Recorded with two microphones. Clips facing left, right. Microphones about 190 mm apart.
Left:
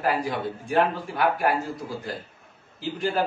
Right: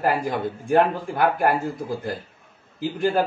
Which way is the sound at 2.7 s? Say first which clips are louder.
Right 5 dB; 50° right (ahead or behind).